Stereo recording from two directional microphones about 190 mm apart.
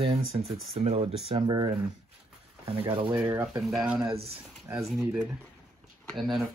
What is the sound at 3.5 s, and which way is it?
Speech, centre (ahead or behind).